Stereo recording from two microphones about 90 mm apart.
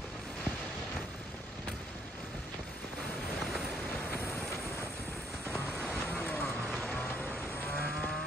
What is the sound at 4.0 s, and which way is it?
Vehicle, 20° left (ahead or behind).